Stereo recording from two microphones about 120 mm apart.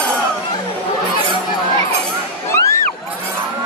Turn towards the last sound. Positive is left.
turn(degrees=25)  # may be behind; listen again after turning